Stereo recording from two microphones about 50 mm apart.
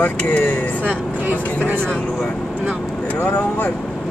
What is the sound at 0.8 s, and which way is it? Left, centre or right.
Speech, right.